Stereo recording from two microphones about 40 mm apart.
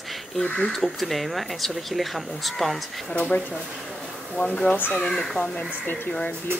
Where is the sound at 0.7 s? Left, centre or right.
Centre.